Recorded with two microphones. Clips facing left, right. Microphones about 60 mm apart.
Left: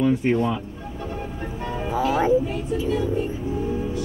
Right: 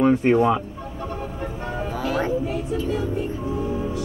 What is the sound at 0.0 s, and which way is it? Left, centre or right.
Speech, right.